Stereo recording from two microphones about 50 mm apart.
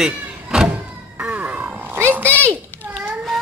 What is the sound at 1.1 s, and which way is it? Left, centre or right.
Music, right.